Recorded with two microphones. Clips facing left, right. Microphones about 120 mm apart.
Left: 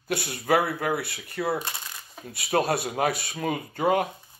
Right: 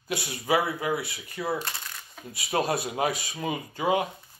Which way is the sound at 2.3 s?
65° left (ahead or behind).